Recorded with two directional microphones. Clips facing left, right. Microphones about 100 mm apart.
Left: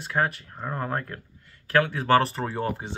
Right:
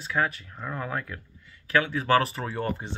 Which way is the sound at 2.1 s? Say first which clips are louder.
Left 2 dB; 35° left (ahead or behind).